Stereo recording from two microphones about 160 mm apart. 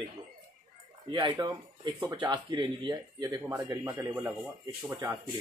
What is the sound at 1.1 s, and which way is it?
Speech, 30° right (ahead or behind).